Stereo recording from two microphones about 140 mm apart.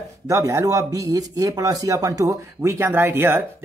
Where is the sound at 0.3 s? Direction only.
20° right (ahead or behind).